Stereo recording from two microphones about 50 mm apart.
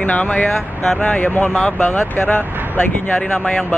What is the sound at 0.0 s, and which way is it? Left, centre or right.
Speech, left.